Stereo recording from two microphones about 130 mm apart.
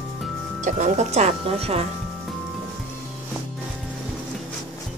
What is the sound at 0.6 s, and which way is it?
Speech, 65° right (ahead or behind).